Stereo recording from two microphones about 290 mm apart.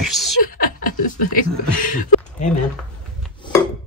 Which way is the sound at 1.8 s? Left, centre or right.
Left.